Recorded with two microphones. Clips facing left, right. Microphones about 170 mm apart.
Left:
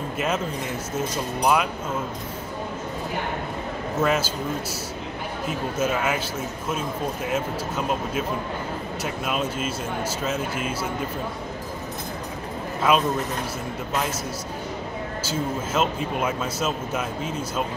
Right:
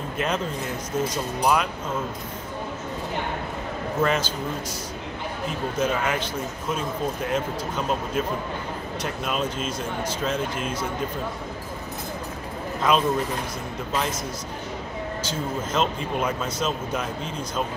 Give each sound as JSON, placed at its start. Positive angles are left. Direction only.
{"t": 0.9, "sound": "speech", "side_deg": 10}
{"t": 4.0, "sound": "speech", "side_deg": 5}
{"t": 5.8, "sound": "speech", "side_deg": 5}
{"t": 12.9, "sound": "speech", "side_deg": 5}
{"t": 15.2, "sound": "speech", "side_deg": 5}